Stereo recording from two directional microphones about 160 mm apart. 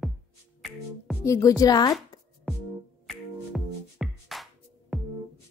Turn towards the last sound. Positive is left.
turn(degrees=0)  # may be behind; listen again after turning